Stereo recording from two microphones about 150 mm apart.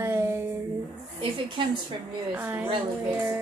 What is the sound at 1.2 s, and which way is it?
Speech, 35° right (ahead or behind).